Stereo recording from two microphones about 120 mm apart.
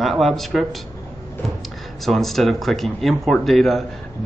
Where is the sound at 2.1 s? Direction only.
Centre (ahead or behind).